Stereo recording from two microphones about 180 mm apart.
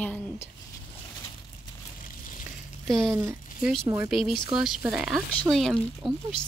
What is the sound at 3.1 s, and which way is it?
Speech, 15° right (ahead or behind).